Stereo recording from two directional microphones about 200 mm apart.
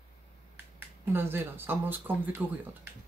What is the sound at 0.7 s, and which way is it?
Speech, 10° right (ahead or behind).